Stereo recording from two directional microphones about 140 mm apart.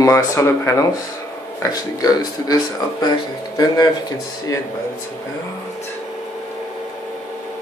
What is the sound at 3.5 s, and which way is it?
Speech, 30° left (ahead or behind).